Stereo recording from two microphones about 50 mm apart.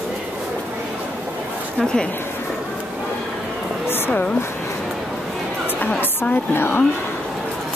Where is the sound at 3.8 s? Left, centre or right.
Left.